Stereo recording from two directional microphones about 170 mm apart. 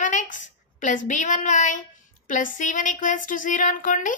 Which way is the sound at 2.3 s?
50° left (ahead or behind).